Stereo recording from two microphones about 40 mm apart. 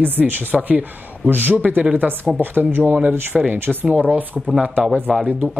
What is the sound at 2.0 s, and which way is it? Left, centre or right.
Speech, right.